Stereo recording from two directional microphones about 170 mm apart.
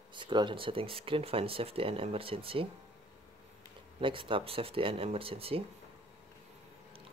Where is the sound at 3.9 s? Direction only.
30° right (ahead or behind).